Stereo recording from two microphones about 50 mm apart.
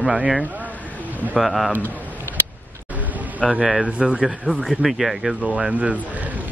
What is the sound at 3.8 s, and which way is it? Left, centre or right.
Speech, right.